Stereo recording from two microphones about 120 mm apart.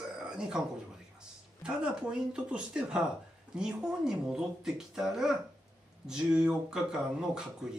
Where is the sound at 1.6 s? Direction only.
5° right (ahead or behind).